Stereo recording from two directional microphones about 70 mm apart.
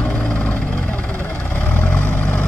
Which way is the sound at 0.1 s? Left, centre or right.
Centre.